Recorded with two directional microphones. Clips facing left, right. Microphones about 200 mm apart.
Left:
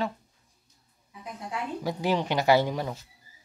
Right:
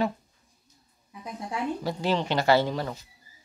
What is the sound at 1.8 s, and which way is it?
Speech, 15° left (ahead or behind).